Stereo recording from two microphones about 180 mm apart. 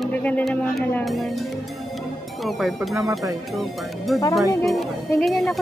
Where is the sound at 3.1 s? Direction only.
Centre (ahead or behind).